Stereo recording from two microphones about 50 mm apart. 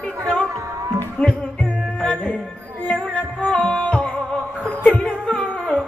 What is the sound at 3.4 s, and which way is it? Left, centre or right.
Music, left.